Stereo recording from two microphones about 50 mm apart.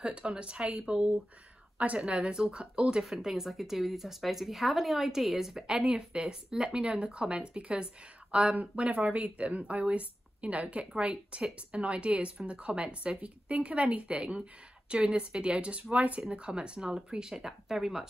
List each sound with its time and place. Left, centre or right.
0.0 s a woman's voice: centre
3.0 s a woman's voice: centre